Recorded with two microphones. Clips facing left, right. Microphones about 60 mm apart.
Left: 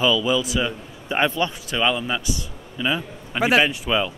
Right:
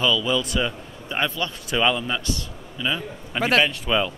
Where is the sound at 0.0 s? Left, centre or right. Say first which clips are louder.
Left 2 dB; centre.